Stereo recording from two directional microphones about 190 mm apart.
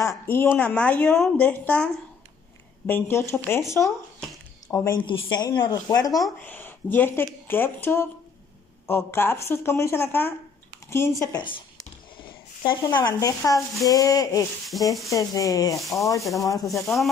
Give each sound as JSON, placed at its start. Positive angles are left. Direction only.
{"t": 0.0, "sound": "speech", "side_deg": 15}
{"t": 2.9, "sound": "speech", "side_deg": 15}
{"t": 4.3, "sound": "a sound", "side_deg": 10}
{"t": 5.0, "sound": "speech", "side_deg": 25}
{"t": 12.6, "sound": "speech", "side_deg": 25}
{"t": 14.7, "sound": "speech", "side_deg": 0}
{"t": 15.0, "sound": "speech", "side_deg": 15}
{"t": 16.2, "sound": "speech", "side_deg": 0}